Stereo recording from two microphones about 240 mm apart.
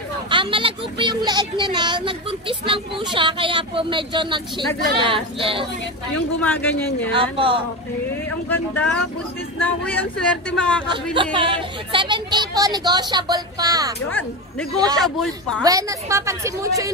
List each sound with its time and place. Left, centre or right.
0.3 s speech: right
6.4 s speech: centre
7.2 s speech: right
8.5 s speech: centre
11.1 s speech: right
15.6 s speech: centre